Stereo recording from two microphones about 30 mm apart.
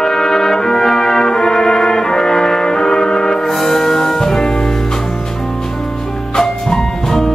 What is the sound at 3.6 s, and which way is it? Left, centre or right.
Music, centre.